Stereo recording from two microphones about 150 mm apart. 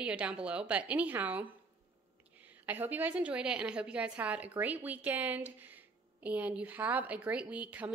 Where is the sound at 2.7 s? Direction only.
10° right (ahead or behind).